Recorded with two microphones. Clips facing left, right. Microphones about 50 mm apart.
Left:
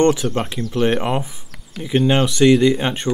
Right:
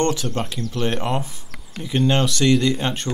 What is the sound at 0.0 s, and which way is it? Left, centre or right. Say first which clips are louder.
Speech: left 5 dB; centre.